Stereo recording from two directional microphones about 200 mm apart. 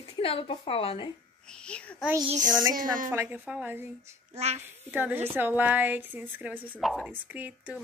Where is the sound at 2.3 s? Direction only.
40° right (ahead or behind).